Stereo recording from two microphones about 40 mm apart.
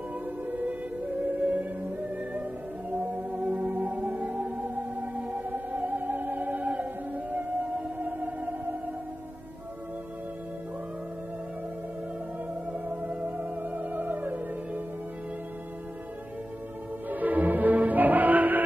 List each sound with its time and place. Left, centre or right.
0.5 s music: right
12.7 s theremin: right
17.1 s music: right